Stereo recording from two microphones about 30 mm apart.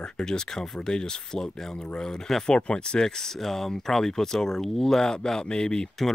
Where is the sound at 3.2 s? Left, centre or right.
Centre.